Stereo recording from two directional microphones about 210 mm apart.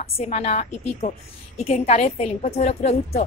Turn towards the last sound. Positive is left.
turn(degrees=30)  # may be behind; listen again after turning